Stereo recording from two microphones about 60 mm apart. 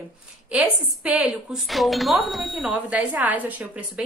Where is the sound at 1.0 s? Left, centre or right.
Right.